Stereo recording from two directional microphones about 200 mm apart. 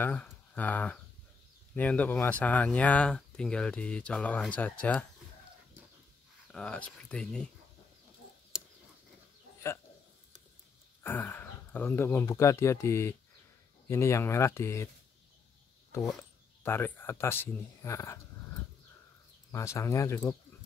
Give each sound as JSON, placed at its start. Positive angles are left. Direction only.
{"t": 0.0, "sound": "speech", "side_deg": 10}
{"t": 6.4, "sound": "speech", "side_deg": 5}
{"t": 11.0, "sound": "speech", "side_deg": 10}
{"t": 16.6, "sound": "speech", "side_deg": 10}
{"t": 19.5, "sound": "speech", "side_deg": 15}